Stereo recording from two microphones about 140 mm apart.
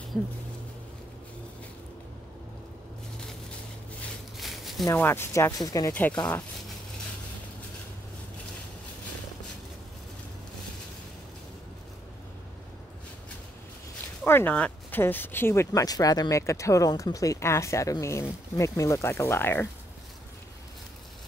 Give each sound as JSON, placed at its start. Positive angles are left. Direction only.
{"t": 4.4, "sound": "a sound", "side_deg": 0}
{"t": 4.9, "sound": "speech", "side_deg": 15}
{"t": 14.2, "sound": "speech", "side_deg": 15}